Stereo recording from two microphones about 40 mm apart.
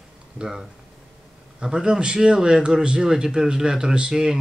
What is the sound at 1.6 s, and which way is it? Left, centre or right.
Speech, centre.